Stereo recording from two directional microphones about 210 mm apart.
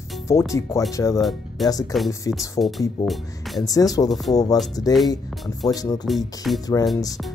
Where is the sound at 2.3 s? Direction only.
15° left (ahead or behind).